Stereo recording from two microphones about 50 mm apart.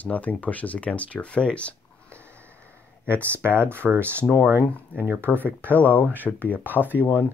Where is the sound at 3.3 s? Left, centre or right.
Right.